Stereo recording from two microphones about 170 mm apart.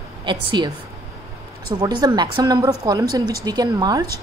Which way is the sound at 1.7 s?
25° right (ahead or behind).